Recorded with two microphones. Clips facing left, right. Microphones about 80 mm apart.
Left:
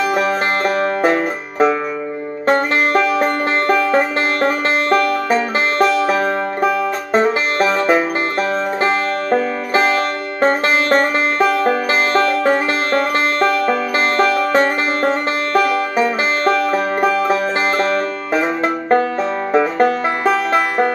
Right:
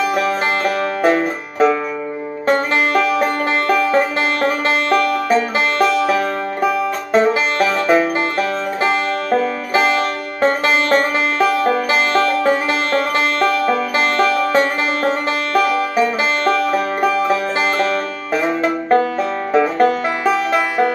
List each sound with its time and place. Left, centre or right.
0.1 s music: left
18.6 s banjo: left
19.5 s music: left
20.2 s music: left